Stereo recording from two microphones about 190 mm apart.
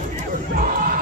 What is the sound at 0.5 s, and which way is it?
Battle cry, 45° right (ahead or behind).